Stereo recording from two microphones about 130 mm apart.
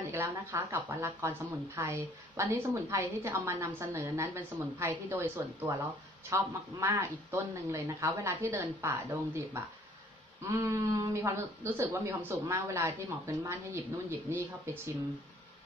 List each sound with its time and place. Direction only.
0.1 s a woman's voice: 20° right (ahead or behind)